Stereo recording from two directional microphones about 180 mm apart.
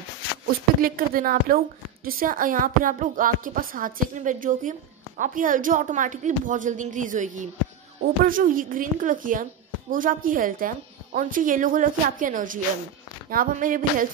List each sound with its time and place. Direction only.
0.7 s a woman's voice: 55° right (ahead or behind)